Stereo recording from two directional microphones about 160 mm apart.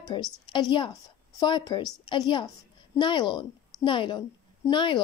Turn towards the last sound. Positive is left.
turn(degrees=30)  # may be behind; listen again after turning